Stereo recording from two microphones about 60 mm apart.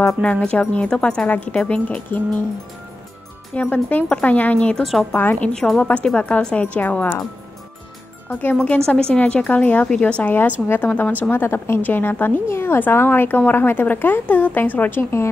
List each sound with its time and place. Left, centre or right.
0.2 s speech: centre
1.2 s speech: left
3.5 s a woman's voice: centre
5.5 s speech: centre
5.8 s speech: left
8.3 s a woman's voice: left
8.6 s speech: centre
10.3 s a woman's voice: left
11.4 s a woman's voice: left
12.4 s a woman's voice: left
15.0 s a woman's voice: left